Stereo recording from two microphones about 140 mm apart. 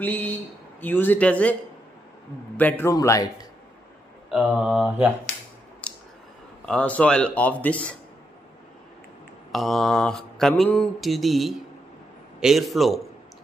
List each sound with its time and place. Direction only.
0.0 s a man's voice: 10° left (ahead or behind)
4.3 s mantra: centre (ahead or behind)
5.8 s a sound: 10° left (ahead or behind)
6.6 s speech: 10° left (ahead or behind)
9.5 s mantra: centre (ahead or behind)